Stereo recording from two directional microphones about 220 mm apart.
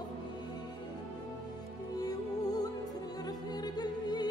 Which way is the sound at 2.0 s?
15° left (ahead or behind).